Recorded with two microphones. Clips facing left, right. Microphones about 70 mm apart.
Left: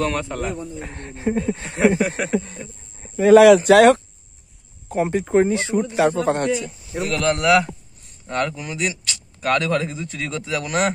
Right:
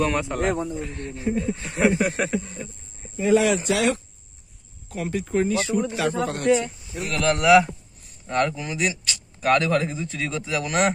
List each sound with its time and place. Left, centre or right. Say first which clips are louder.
0.0 s speech: even; centre
0.4 s speech: right 3 dB; right
0.7 s speech: right 2 dB; left
2.0 s speech: left 2 dB; centre
3.2 s speech: left 9 dB; left
4.8 s speech: left 7 dB; left
7.1 s speech: even; centre